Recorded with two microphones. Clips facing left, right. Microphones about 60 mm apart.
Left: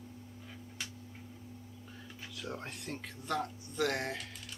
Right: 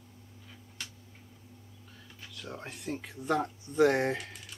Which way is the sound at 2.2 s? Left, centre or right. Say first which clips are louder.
Even; centre.